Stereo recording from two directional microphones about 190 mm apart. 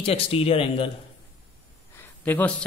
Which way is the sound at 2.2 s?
10° left (ahead or behind).